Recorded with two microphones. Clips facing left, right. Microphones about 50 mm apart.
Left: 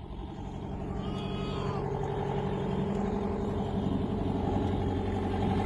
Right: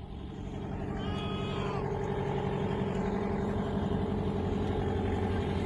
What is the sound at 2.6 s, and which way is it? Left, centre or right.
Vehicle, right.